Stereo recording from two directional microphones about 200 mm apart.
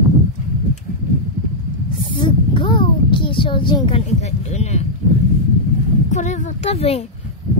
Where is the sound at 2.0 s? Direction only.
25° left (ahead or behind).